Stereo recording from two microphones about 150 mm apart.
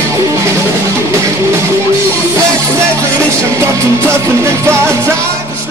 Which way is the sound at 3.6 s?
15° right (ahead or behind).